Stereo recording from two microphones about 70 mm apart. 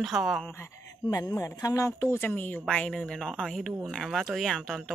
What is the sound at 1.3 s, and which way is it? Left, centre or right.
Speech, left.